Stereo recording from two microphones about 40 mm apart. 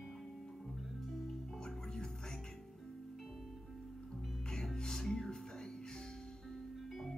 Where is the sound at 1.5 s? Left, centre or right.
Centre.